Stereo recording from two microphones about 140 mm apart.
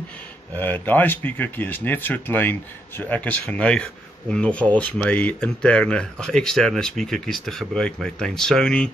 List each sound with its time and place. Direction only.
0.6 s speech: 10° left (ahead or behind)